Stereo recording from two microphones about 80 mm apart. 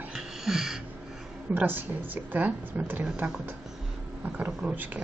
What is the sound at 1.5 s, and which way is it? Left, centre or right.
A woman's voice, right.